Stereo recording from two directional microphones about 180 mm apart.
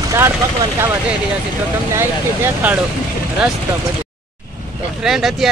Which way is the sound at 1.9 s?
10° right (ahead or behind).